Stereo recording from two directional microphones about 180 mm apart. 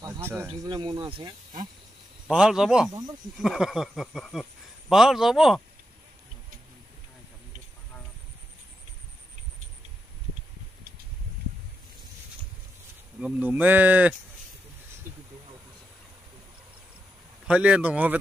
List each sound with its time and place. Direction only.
0.0 s speech: 15° right (ahead or behind)
2.2 s speech: 5° right (ahead or behind)
13.2 s speech: 10° right (ahead or behind)
17.5 s speech: 5° right (ahead or behind)